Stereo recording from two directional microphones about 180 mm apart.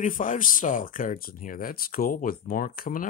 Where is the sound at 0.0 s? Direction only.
45° left (ahead or behind).